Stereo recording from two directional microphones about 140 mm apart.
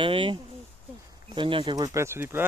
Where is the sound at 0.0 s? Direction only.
35° right (ahead or behind).